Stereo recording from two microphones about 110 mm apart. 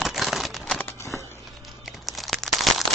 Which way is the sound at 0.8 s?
20° left (ahead or behind).